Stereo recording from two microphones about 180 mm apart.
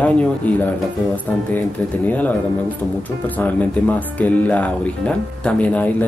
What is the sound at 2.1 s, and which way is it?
Speech, 10° left (ahead or behind).